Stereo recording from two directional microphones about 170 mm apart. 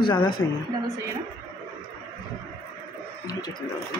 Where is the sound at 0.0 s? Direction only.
25° left (ahead or behind).